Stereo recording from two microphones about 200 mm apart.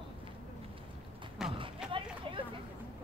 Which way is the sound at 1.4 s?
5° right (ahead or behind).